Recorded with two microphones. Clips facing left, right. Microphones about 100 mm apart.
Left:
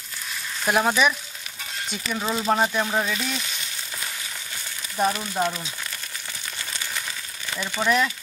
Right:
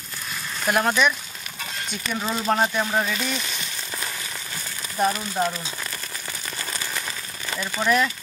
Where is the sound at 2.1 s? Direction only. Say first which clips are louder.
Even; 5° left (ahead or behind).